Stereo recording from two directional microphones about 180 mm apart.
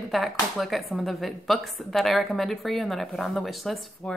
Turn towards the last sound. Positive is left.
turn(degrees=0)  # may be behind; listen again after turning